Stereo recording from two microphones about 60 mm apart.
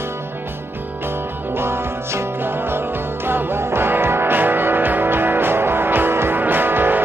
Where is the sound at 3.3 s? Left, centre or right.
Right.